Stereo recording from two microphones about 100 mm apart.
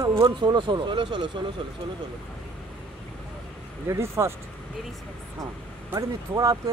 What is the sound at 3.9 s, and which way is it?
Speech, 25° right (ahead or behind).